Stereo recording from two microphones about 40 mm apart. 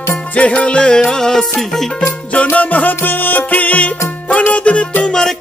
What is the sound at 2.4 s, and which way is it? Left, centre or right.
Music, left.